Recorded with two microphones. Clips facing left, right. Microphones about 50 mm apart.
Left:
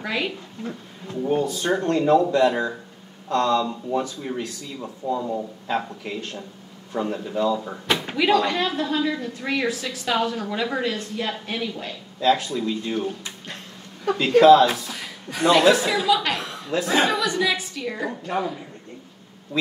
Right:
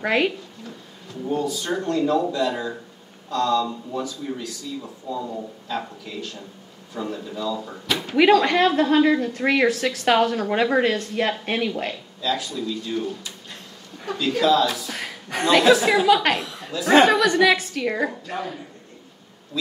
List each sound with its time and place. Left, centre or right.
0.0 s a woman's voice: right
0.7 s speech: left
5.7 s speech: left
7.5 s speech: centre
7.9 s speech: left
8.2 s a woman's voice: right
12.2 s speech: left
14.9 s a sound: right
15.7 s a woman's voice: right
16.3 s chuckle: left
16.8 s a woman's voice: right
18.2 s speech: left
19.5 s bee: left